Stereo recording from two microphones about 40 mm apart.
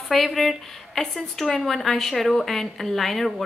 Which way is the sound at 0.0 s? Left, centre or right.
Centre.